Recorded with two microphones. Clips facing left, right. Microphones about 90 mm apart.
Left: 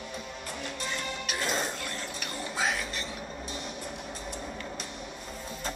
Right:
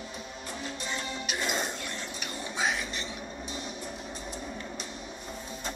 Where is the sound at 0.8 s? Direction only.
20° right (ahead or behind).